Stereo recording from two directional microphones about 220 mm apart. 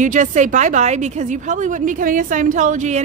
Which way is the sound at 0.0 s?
35° right (ahead or behind).